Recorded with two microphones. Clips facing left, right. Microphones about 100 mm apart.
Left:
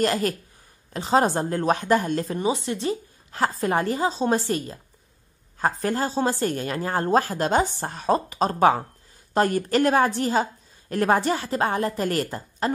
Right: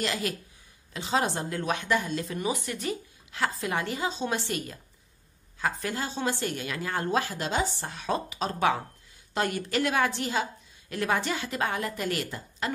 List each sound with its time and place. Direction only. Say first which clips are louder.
0.0 s a woman's voice: left 8 dB; 45° left (ahead or behind)
2.3 s speech: left 6 dB; 25° left (ahead or behind)
3.3 s a woman's voice: left 6 dB; 40° left (ahead or behind)